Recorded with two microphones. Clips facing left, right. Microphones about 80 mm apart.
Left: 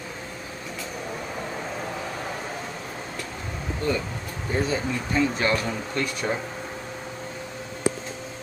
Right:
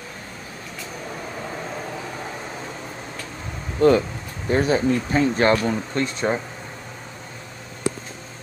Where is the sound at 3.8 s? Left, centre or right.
Right.